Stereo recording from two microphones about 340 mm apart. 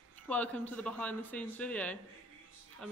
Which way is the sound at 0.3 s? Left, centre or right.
Centre.